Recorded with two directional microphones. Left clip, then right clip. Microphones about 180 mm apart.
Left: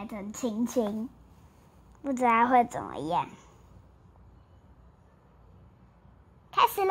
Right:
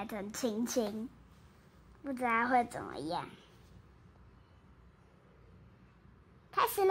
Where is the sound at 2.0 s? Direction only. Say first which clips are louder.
Left 8 dB; 35° left (ahead or behind).